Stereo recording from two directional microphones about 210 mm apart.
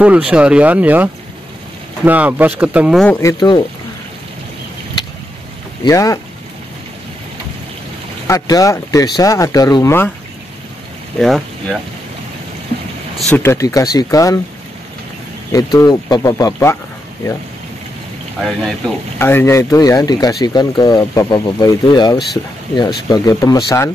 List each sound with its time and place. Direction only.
0.0 s speech: 5° right (ahead or behind)
3.2 s speech: 15° left (ahead or behind)
5.9 s speech: 15° left (ahead or behind)
8.3 s speech: 15° left (ahead or behind)
11.1 s speech: centre (ahead or behind)
13.3 s speech: 10° left (ahead or behind)
15.5 s speech: 20° left (ahead or behind)
18.4 s speech: centre (ahead or behind)